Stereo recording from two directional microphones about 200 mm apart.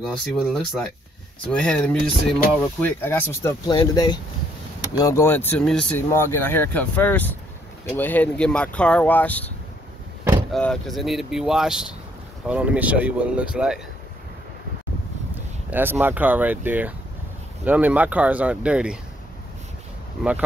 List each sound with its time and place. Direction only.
0.0 s speech: centre (ahead or behind)
10.5 s speech: centre (ahead or behind)
15.7 s speech: 10° right (ahead or behind)